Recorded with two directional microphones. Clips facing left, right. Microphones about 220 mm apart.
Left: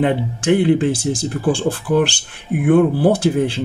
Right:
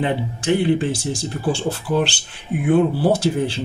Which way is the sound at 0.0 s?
55° left (ahead or behind).